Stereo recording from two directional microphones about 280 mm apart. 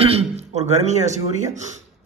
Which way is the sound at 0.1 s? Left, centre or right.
Right.